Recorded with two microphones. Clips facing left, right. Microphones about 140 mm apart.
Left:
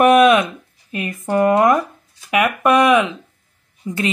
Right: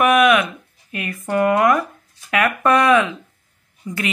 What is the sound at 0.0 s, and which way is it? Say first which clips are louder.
A woman's voice: left 3 dB; 30° left (ahead or behind).